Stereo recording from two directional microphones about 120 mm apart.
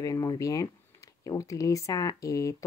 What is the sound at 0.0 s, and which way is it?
Speech, 30° left (ahead or behind).